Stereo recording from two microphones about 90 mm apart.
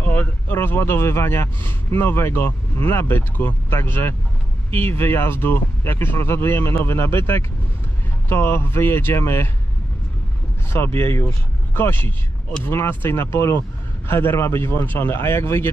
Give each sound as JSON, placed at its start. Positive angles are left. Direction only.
{"t": 0.0, "sound": "speech", "side_deg": 20}
{"t": 10.7, "sound": "speech", "side_deg": 25}